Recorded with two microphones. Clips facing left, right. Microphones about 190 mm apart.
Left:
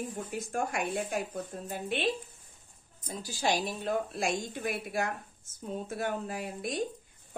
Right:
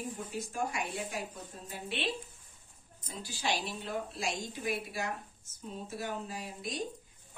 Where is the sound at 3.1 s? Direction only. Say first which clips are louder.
Left 5 dB; 45° left (ahead or behind).